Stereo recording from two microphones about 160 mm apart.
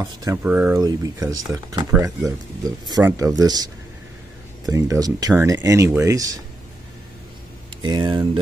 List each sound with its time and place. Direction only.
0.0 s speech: 25° right (ahead or behind)
0.4 s speech: 10° right (ahead or behind)
0.7 s speech: 20° right (ahead or behind)
7.8 s speech: 30° right (ahead or behind)